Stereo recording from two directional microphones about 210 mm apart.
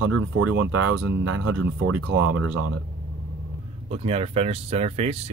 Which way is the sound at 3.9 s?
30° right (ahead or behind).